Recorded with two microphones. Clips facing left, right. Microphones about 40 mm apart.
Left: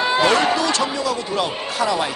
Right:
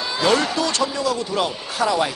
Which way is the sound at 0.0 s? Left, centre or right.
Left.